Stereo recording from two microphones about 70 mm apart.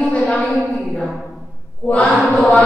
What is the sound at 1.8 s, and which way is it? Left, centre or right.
Mantra, centre.